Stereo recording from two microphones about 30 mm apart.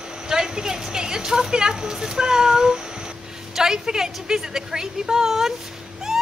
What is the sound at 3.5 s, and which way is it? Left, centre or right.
A woman's voice, centre.